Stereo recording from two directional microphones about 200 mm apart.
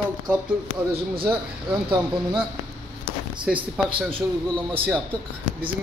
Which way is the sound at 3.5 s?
5° right (ahead or behind).